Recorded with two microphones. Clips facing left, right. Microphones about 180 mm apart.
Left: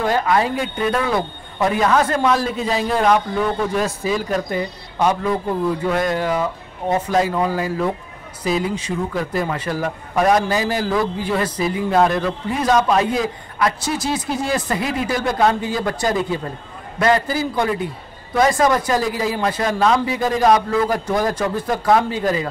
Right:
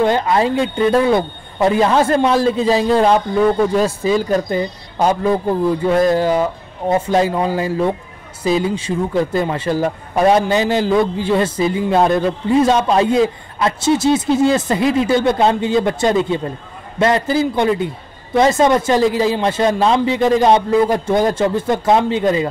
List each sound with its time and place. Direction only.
0.0 s speech: 25° right (ahead or behind)